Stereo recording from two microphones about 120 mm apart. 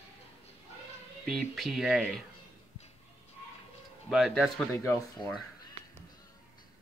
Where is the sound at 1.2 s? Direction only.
Centre (ahead or behind).